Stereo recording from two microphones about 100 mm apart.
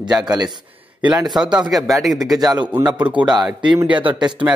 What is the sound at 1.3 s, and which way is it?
Speech, 10° right (ahead or behind).